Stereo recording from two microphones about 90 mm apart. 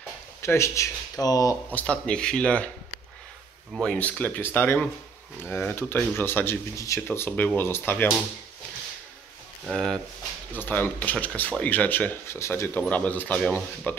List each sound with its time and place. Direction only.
0.4 s speech: 30° left (ahead or behind)
1.7 s speech: 15° left (ahead or behind)
3.8 s speech: 10° left (ahead or behind)
9.7 s speech: 5° left (ahead or behind)
10.5 s speech: 20° left (ahead or behind)
12.3 s speech: 30° left (ahead or behind)